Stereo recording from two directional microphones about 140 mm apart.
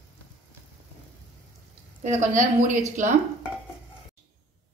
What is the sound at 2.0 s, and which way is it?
A woman's voice, 60° right (ahead or behind).